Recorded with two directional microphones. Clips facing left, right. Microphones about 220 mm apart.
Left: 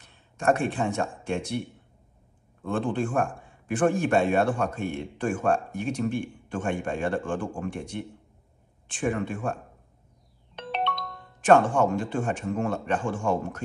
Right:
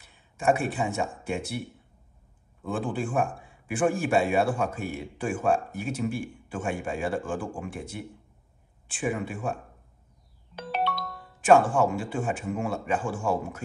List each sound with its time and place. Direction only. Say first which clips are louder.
0.0 s a man's voice: even; 5° right (ahead or behind)